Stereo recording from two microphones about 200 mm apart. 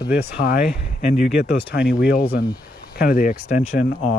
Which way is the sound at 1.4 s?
55° left (ahead or behind).